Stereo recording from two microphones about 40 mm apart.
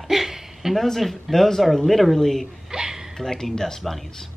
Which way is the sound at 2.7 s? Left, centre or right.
Centre.